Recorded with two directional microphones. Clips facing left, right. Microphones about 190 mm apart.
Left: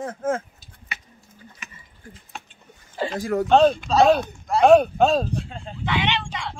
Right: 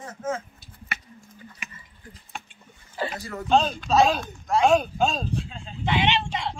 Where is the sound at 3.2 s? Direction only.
50° left (ahead or behind).